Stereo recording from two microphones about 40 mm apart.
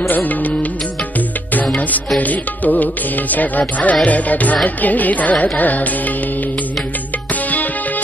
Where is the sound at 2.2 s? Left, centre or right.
Left.